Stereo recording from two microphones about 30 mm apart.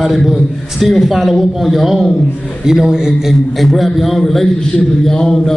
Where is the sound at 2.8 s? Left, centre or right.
Right.